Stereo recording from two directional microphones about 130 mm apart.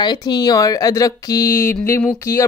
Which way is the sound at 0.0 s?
35° left (ahead or behind).